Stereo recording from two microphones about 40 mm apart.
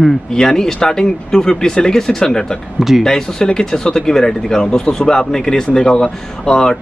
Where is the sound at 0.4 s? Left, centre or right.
Centre.